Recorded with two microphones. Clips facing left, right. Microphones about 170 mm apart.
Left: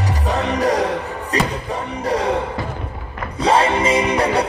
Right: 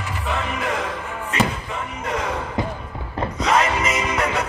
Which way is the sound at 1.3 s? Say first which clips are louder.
Left 2 dB; 35° left (ahead or behind).